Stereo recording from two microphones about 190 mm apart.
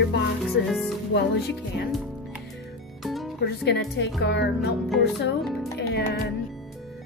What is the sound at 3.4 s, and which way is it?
Music, 60° left (ahead or behind).